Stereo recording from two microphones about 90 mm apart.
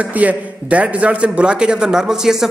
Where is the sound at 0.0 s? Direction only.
15° right (ahead or behind).